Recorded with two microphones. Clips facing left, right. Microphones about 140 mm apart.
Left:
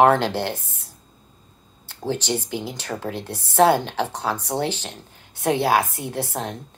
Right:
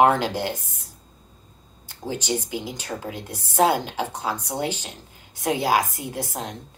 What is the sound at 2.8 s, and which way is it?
Speech, 70° left (ahead or behind).